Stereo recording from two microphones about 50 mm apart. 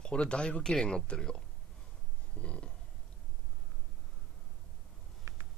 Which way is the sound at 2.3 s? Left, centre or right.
Left.